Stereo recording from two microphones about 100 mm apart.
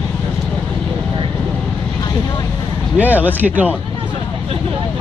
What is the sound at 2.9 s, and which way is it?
Speech, 15° right (ahead or behind).